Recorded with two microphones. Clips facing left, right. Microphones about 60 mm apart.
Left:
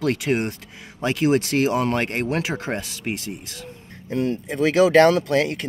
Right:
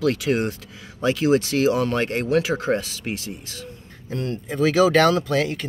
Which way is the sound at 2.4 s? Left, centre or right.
Left.